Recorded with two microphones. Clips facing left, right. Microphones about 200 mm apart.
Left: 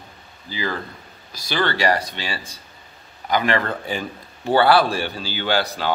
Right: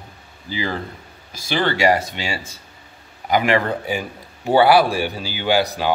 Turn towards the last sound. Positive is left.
turn(degrees=-15)  # may be behind; listen again after turning